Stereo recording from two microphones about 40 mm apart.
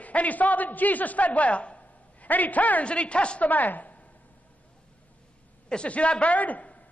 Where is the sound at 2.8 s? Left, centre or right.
Left.